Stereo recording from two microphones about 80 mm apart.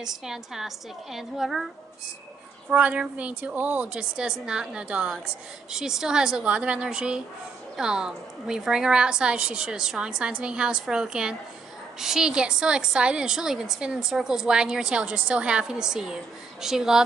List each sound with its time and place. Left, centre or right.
0.0 s a woman's voice: centre
2.7 s a woman's voice: centre